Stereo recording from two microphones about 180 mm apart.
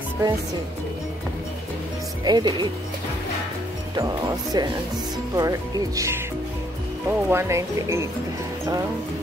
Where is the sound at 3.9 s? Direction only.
20° right (ahead or behind).